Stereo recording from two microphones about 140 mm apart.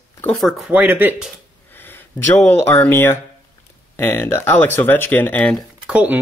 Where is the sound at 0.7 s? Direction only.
10° right (ahead or behind).